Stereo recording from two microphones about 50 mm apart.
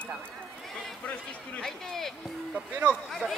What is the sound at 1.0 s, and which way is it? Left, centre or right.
Speech, left.